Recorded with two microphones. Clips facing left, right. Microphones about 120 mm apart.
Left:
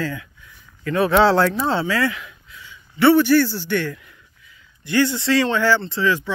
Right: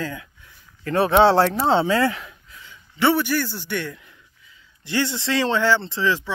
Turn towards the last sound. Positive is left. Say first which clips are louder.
# left 2 dB
turn(degrees=-20)  # may be behind; listen again after turning